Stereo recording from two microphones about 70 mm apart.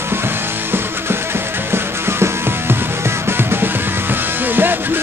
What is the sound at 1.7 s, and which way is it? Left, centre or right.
Music, right.